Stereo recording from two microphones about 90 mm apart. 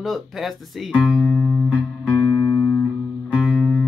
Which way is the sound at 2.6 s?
25° left (ahead or behind).